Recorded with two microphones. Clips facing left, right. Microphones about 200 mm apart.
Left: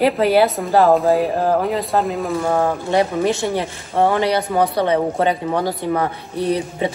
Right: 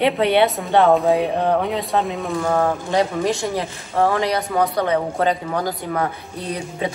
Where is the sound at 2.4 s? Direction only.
15° left (ahead or behind).